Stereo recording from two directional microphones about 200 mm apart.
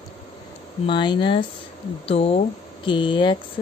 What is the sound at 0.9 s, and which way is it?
A woman's voice, 25° left (ahead or behind).